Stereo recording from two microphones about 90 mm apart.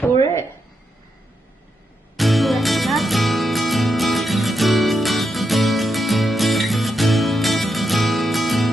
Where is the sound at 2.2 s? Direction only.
Centre (ahead or behind).